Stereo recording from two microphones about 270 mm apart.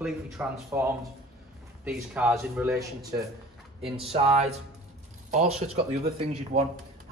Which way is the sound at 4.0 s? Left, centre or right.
Right.